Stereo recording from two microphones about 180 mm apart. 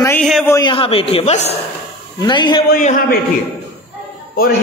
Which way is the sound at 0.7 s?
30° left (ahead or behind).